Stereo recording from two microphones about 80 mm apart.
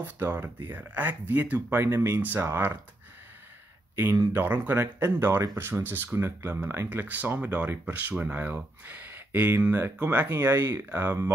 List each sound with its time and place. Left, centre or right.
0.0 s speech: right
1.8 s speech: right
2.2 s speech: right
3.9 s speech: right